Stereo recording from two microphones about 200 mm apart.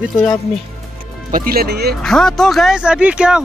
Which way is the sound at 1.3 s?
50° right (ahead or behind).